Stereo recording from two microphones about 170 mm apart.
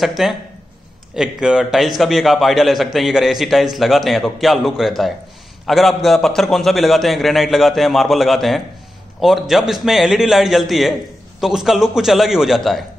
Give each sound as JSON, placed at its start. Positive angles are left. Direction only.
{"t": 0.0, "sound": "a man's voice", "side_deg": 0}